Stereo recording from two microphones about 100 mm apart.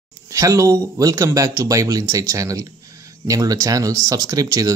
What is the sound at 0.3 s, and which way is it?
Speech, 35° right (ahead or behind).